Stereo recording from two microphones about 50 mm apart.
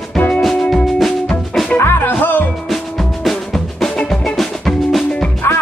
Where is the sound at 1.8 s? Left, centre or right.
Left.